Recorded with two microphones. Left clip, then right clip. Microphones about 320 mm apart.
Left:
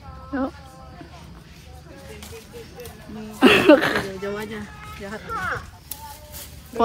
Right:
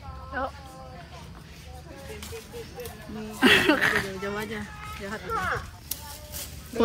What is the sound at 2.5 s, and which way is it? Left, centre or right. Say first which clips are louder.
Speech: even; centre.